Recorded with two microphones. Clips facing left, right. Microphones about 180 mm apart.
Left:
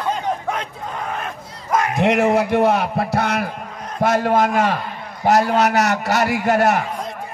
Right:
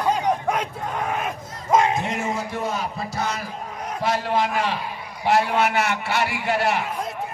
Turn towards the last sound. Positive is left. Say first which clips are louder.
# left 6 dB
turn(degrees=45)  # may be behind; listen again after turning